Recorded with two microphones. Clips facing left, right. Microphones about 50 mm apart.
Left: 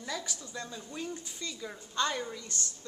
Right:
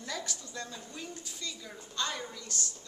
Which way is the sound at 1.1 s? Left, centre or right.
Left.